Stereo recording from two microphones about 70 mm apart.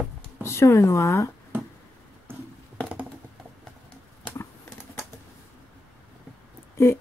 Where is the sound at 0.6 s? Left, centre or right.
Left.